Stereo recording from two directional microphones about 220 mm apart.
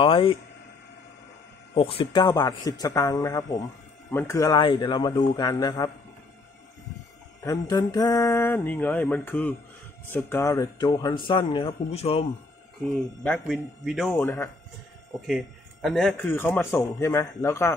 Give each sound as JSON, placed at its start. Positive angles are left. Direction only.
{"t": 0.0, "sound": "speech", "side_deg": 25}
{"t": 1.8, "sound": "speech", "side_deg": 25}
{"t": 7.4, "sound": "speech", "side_deg": 15}
{"t": 13.2, "sound": "a man's voice", "side_deg": 5}